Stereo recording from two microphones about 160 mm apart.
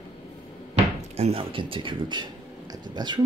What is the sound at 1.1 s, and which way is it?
Speech, 40° right (ahead or behind).